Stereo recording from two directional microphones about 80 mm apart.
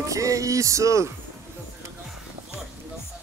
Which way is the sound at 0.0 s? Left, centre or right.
Right.